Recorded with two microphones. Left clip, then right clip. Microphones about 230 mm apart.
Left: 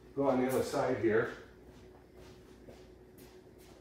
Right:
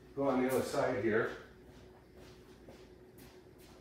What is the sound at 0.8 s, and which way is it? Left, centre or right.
Speech, centre.